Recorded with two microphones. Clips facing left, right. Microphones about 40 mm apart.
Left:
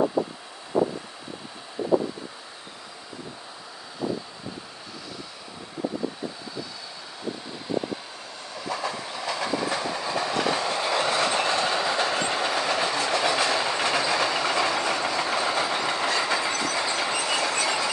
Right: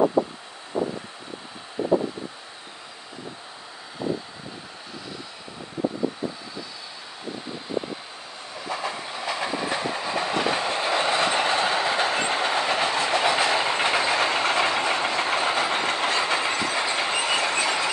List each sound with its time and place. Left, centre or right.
8.5 s train: right